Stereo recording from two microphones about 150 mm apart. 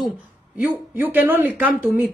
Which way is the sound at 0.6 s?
10° right (ahead or behind).